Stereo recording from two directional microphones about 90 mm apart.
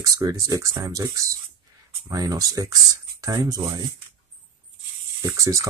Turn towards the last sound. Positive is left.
turn(degrees=-35)  # may be behind; listen again after turning